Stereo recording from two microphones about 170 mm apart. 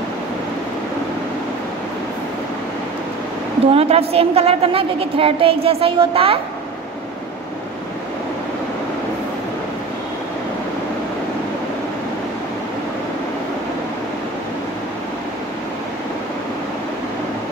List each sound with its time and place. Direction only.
3.7 s a woman's voice: 35° right (ahead or behind)